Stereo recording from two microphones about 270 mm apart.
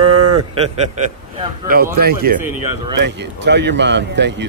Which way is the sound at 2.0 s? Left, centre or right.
Right.